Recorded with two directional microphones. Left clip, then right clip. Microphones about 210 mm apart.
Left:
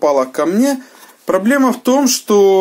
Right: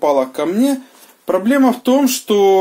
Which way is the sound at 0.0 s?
25° left (ahead or behind).